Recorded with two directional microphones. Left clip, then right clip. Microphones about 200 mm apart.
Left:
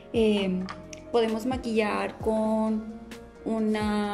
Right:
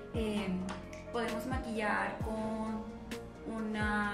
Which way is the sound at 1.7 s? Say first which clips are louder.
Left 7 dB; 55° left (ahead or behind).